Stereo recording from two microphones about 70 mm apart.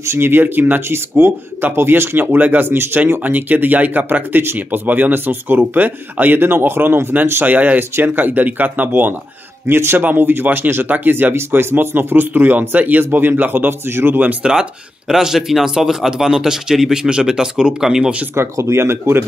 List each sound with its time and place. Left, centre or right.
0.0 s speech: right
14.4 s speech: centre
18.3 s speech: right